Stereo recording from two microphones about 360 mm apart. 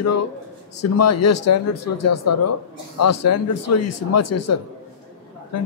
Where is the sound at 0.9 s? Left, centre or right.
Left.